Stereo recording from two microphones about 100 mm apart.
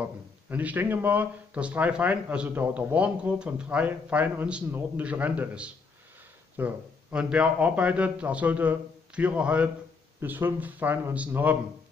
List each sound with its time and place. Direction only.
0.0 s speech: 15° right (ahead or behind)